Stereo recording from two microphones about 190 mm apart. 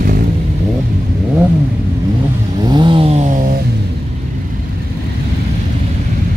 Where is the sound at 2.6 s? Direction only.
25° right (ahead or behind).